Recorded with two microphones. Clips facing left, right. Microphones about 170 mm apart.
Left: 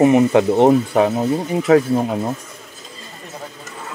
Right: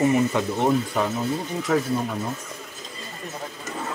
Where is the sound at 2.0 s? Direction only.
45° left (ahead or behind).